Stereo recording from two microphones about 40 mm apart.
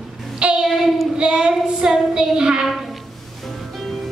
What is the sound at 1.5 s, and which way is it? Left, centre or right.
Child singing, centre.